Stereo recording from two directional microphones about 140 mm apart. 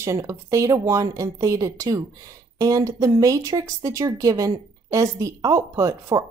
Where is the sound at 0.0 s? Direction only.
20° right (ahead or behind).